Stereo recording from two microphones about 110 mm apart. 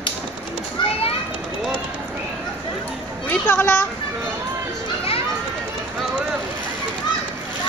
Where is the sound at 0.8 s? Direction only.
45° left (ahead or behind).